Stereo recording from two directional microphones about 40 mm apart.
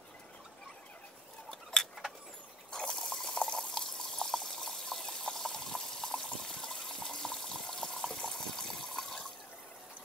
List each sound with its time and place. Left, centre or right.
1.5 s tick-tock: centre
2.7 s water: centre